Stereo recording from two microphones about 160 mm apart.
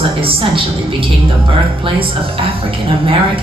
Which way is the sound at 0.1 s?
35° right (ahead or behind).